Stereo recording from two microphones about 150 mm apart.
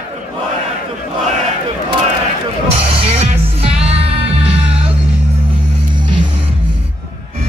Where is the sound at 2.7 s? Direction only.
40° right (ahead or behind).